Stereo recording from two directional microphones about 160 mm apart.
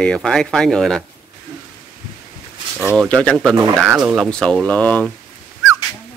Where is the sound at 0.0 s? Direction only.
5° left (ahead or behind).